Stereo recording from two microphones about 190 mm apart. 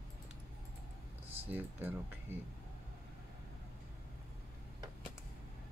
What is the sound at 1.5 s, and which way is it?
Speech, 10° right (ahead or behind).